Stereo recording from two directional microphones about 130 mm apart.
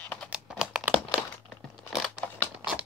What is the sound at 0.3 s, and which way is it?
Computer keyboard, 5° right (ahead or behind).